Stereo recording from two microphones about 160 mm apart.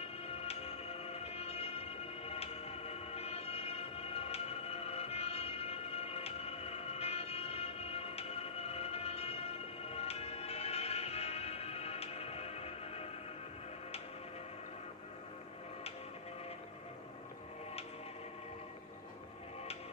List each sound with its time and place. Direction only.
0.3 s music: 40° left (ahead or behind)